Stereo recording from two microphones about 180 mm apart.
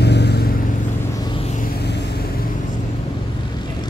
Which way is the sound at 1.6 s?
65° left (ahead or behind).